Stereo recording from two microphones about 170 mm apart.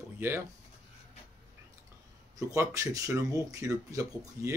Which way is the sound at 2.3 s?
20° right (ahead or behind).